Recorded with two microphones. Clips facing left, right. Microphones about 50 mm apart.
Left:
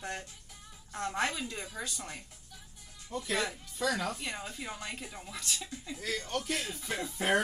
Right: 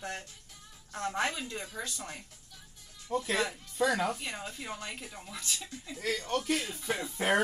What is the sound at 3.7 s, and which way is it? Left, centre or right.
Speech, right.